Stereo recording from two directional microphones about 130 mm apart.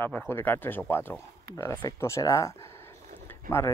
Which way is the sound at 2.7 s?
20° left (ahead or behind).